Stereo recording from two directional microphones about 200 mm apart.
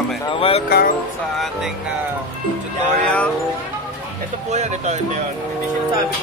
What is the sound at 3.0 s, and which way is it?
Speech, 5° left (ahead or behind).